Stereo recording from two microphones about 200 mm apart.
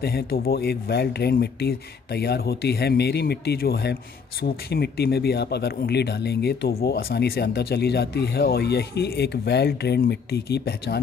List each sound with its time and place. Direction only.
0.0 s speech: 50° left (ahead or behind)